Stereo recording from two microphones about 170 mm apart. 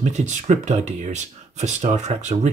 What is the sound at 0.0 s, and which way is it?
Speech, 45° right (ahead or behind).